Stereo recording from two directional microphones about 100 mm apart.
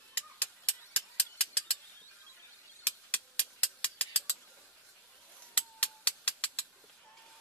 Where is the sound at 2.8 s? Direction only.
15° left (ahead or behind).